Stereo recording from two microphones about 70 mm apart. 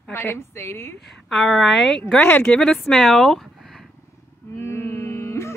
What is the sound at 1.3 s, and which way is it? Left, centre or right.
Speech, centre.